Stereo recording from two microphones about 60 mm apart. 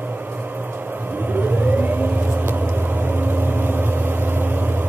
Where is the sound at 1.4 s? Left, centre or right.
Right.